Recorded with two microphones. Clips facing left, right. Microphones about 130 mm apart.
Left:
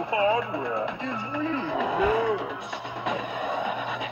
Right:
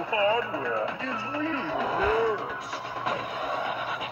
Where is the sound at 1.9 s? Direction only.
15° left (ahead or behind).